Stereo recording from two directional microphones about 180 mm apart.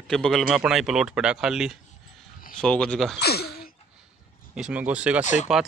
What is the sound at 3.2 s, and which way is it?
Speech, 60° left (ahead or behind).